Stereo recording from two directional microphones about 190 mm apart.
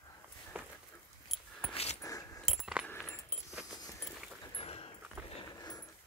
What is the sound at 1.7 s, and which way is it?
Dog, 35° left (ahead or behind).